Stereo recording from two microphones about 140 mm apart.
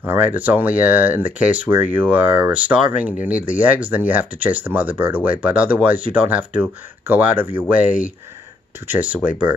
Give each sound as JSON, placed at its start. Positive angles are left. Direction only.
{"t": 0.0, "sound": "speech", "side_deg": -15}
{"t": 7.8, "sound": "speech", "side_deg": 70}
{"t": 8.8, "sound": "speech", "side_deg": -10}